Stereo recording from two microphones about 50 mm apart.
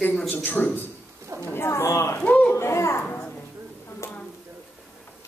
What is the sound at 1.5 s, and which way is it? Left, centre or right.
Speech, left.